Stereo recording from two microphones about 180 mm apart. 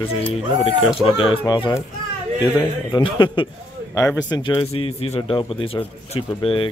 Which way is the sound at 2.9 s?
25° left (ahead or behind).